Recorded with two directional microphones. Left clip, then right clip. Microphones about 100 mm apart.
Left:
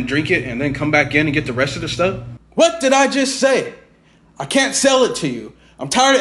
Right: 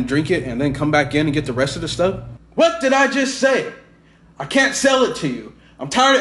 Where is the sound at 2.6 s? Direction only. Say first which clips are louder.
Left 1 dB; 45° left (ahead or behind).